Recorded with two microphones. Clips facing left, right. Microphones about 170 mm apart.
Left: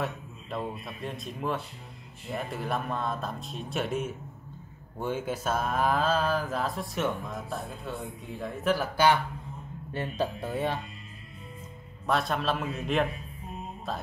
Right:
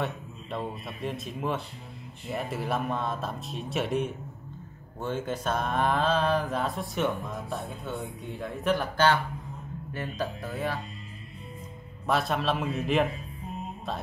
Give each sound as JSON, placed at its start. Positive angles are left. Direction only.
{"t": 0.0, "sound": "mantra", "side_deg": 0}
{"t": 9.9, "sound": "speech", "side_deg": 30}
{"t": 12.1, "sound": "mantra", "side_deg": 0}